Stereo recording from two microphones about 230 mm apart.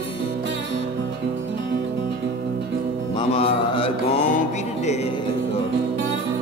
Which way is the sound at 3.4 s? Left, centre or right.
Left.